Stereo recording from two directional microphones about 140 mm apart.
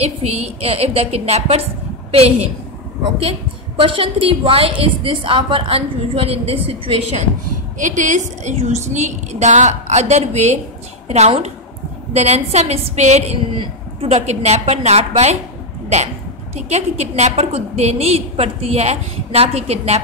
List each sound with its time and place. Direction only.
0.0 s a woman's voice: 45° right (ahead or behind)
7.8 s a woman's voice: 65° right (ahead or behind)
16.5 s a woman's voice: 50° right (ahead or behind)